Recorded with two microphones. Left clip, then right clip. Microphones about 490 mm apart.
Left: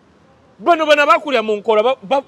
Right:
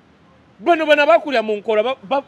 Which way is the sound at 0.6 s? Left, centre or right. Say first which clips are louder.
Left 2 dB; left.